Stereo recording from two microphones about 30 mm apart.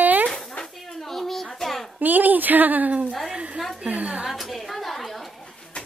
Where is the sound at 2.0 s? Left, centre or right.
Right.